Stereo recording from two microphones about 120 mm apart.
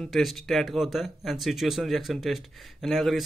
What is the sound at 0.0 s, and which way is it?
Speech, centre (ahead or behind).